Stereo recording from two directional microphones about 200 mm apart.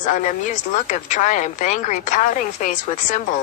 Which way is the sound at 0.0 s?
40° left (ahead or behind).